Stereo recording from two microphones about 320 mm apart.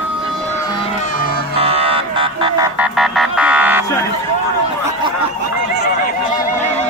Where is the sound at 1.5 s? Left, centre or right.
Centre.